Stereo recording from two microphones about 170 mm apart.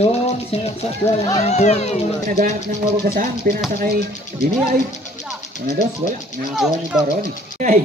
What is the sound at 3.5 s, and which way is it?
Speech, 60° right (ahead or behind).